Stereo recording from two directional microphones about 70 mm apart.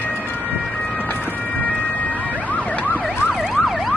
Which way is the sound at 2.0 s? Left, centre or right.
Left.